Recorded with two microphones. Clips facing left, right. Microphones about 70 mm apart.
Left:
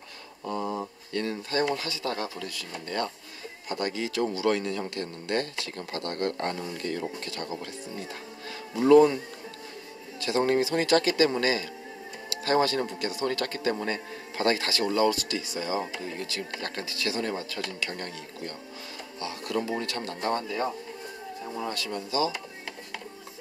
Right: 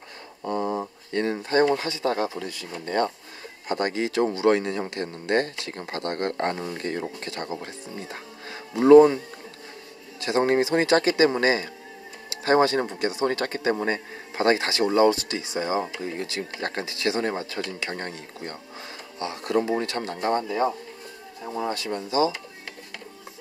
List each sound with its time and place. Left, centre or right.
0.5 s a sound: right
1.1 s speech: right
10.2 s speech: right